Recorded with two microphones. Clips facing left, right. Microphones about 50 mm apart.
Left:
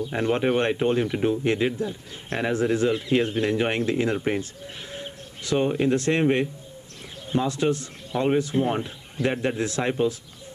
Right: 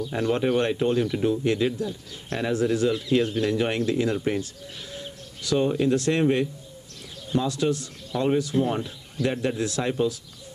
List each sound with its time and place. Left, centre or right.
0.0 s speech: left